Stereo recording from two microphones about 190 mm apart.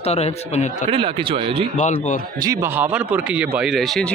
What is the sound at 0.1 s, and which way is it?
Speech, 35° left (ahead or behind).